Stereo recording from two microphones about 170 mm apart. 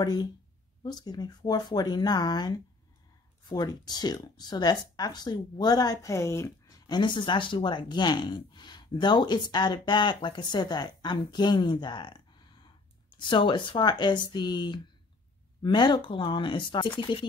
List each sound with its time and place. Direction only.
0.0 s speech: 25° left (ahead or behind)